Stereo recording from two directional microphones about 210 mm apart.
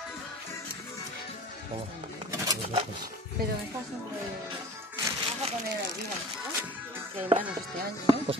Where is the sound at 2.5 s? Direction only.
25° right (ahead or behind).